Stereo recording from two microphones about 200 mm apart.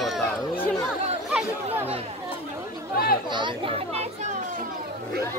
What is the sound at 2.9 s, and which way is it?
Speech, 50° left (ahead or behind).